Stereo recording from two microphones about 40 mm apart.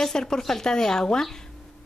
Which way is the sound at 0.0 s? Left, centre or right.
Centre.